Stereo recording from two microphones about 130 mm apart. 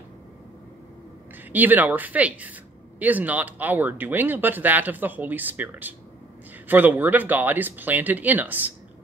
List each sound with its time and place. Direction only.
1.5 s speech: 15° right (ahead or behind)